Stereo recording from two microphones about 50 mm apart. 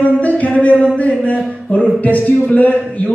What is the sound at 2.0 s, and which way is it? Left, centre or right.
Speech, left.